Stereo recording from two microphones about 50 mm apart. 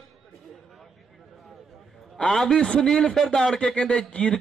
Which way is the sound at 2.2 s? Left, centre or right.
Centre.